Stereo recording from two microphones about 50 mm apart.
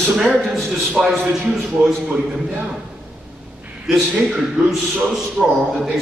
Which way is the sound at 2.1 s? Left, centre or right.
Right.